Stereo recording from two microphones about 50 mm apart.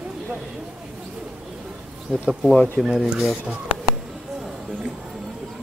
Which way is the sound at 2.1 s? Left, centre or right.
Centre.